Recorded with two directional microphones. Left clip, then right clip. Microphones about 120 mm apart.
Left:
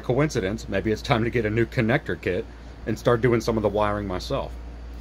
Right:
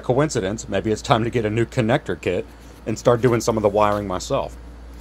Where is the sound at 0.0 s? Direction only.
25° right (ahead or behind).